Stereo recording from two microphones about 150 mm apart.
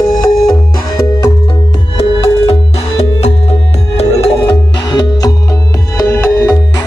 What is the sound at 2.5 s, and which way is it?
Music, 45° left (ahead or behind).